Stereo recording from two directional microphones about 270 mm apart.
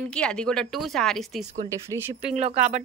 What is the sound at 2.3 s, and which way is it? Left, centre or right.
Speech, right.